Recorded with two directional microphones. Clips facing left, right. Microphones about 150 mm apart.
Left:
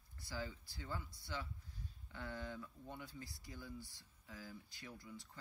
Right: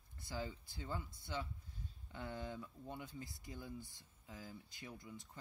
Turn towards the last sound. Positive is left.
turn(degrees=-20)  # may be behind; listen again after turning